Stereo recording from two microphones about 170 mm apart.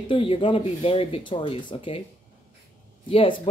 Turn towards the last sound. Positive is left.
turn(degrees=30)  # may be behind; listen again after turning